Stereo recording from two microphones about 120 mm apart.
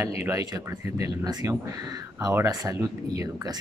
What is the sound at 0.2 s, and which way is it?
A man's voice, 30° right (ahead or behind).